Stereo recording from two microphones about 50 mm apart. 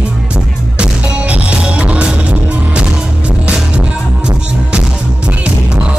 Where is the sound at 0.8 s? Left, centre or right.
Right.